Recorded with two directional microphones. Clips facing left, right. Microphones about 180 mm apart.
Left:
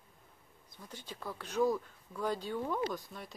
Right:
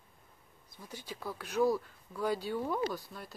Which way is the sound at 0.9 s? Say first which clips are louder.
Right 2 dB; 10° right (ahead or behind).